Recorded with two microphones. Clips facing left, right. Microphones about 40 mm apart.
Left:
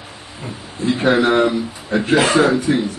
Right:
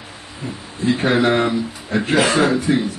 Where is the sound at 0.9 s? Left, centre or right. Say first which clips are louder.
Left 2 dB; left.